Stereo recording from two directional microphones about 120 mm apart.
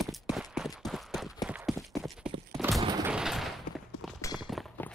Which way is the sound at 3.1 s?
5° right (ahead or behind).